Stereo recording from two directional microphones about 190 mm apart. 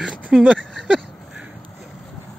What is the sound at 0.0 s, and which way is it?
Speech, 5° right (ahead or behind).